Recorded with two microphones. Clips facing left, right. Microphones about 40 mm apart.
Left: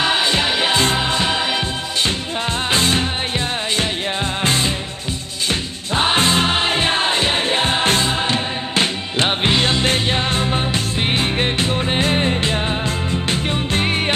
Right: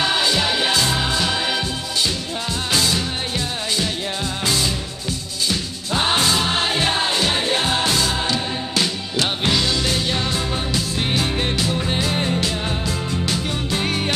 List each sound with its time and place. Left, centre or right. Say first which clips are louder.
0.2 s music: left 2 dB; left